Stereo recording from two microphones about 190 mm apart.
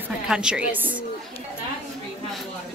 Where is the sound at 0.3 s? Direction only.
5° right (ahead or behind).